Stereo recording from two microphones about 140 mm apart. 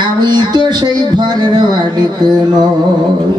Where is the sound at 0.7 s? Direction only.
30° right (ahead or behind).